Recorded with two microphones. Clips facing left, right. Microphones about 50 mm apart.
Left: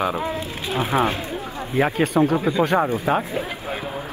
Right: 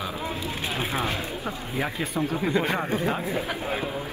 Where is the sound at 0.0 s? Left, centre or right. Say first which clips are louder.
Left 7 dB; left.